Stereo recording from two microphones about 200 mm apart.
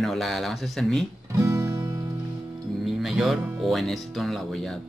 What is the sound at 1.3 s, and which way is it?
Music, 15° right (ahead or behind).